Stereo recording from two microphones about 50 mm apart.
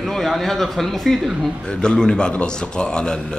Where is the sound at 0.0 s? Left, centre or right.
Centre.